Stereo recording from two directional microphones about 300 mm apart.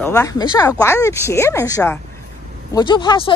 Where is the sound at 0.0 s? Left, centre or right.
Centre.